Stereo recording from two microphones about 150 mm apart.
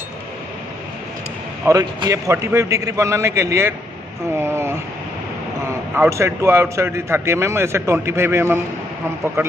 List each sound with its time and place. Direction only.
1.7 s a man's voice: 25° right (ahead or behind)
5.9 s a man's voice: 20° right (ahead or behind)